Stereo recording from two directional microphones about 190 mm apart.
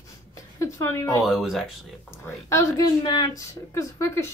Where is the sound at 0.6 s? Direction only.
15° left (ahead or behind).